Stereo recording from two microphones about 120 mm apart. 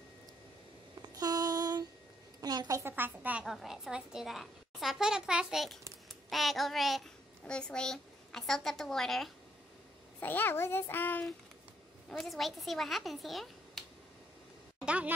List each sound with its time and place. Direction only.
1.0 s a sound: 35° right (ahead or behind)
2.8 s a woman's voice: 15° right (ahead or behind); by 9.3 s 5° left (ahead or behind)
10.2 s a child's voice: 15° left (ahead or behind)
12.1 s a child's voice: centre (ahead or behind)
14.9 s a woman's voice: 10° right (ahead or behind)